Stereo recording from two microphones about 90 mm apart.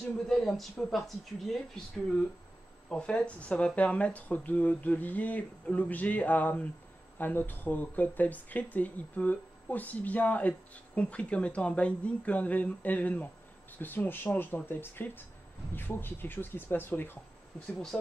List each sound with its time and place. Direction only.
0.3 s speech: 5° left (ahead or behind)
2.9 s speech: 10° left (ahead or behind)